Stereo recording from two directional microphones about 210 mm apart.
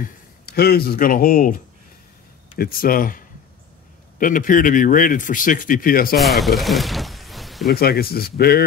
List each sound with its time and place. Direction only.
0.0 s speech: 50° left (ahead or behind)
2.6 s speech: 45° left (ahead or behind)
6.1 s speech: centre (ahead or behind)
7.6 s speech: 45° left (ahead or behind)